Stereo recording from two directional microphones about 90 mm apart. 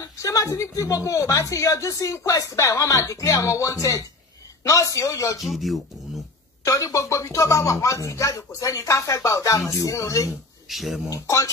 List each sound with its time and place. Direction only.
0.0 s speech: 40° left (ahead or behind)
5.4 s speech: centre (ahead or behind)
6.6 s speech: 40° left (ahead or behind)
10.7 s speech: centre (ahead or behind)
11.1 s speech: 35° left (ahead or behind)